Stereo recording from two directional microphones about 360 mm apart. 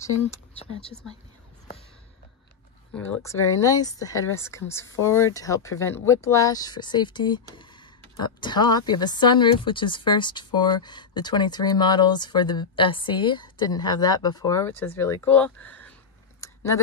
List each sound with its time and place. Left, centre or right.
0.3 s a woman's voice: centre
3.2 s a woman's voice: centre
16.3 s a sound: centre